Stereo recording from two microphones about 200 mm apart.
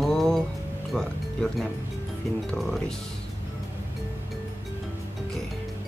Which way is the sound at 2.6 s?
Centre (ahead or behind).